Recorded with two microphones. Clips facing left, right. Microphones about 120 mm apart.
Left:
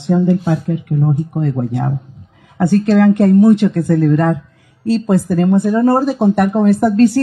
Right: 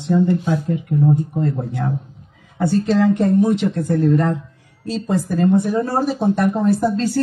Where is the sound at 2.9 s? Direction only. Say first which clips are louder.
Left 6 dB; 70° left (ahead or behind); by 4.4 s 85° left.